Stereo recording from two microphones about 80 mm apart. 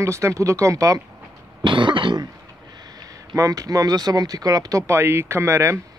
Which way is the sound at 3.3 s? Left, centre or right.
Right.